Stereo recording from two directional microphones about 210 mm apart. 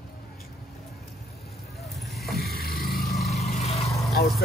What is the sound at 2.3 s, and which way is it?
Vehicle, 45° left (ahead or behind).